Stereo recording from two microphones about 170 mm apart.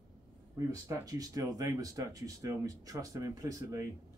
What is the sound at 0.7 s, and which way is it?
Speech, 20° right (ahead or behind).